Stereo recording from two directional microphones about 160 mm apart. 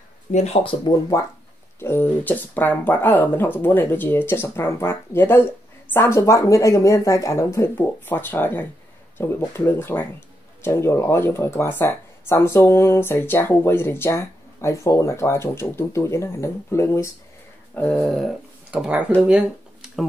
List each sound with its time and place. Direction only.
0.3 s speech: 45° left (ahead or behind)
1.1 s speech: 20° left (ahead or behind)
17.7 s speech: 5° left (ahead or behind)